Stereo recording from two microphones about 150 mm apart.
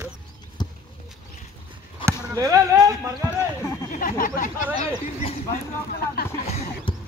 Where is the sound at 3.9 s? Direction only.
65° left (ahead or behind).